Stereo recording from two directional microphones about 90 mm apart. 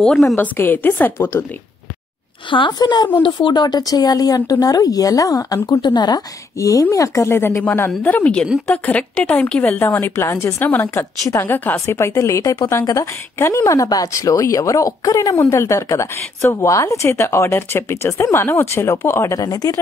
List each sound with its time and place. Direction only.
0.4 s speech: 20° left (ahead or behind)
2.5 s a woman's voice: 60° left (ahead or behind); by 19.4 s 30° left (ahead or behind)
19.4 s speech: 45° left (ahead or behind)